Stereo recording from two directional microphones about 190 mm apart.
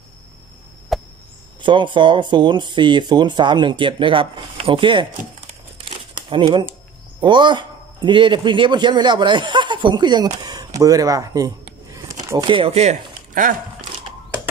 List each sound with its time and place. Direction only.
0.9 s chop: centre (ahead or behind)
1.6 s speech: 25° right (ahead or behind)
5.9 s crumpling: 25° right (ahead or behind)
7.2 s a man's voice: 25° right (ahead or behind); by 13.6 s 45° right (ahead or behind)